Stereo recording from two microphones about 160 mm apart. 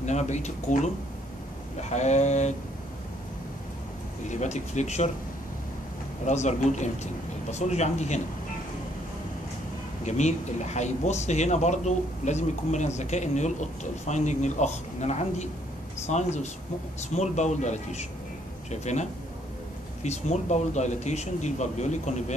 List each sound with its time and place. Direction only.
0.0 s speech: 45° left (ahead or behind)
4.3 s speech: 45° left (ahead or behind)
6.2 s speech: 45° left (ahead or behind)
10.0 s speech: 45° left (ahead or behind)